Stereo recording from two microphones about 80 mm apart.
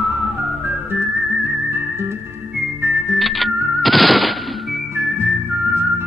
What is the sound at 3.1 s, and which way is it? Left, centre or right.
Music, centre.